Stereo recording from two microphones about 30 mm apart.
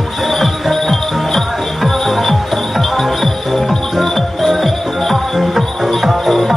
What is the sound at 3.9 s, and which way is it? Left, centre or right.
Music, centre.